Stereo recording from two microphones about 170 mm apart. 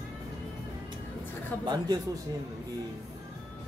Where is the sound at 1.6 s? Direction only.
25° right (ahead or behind).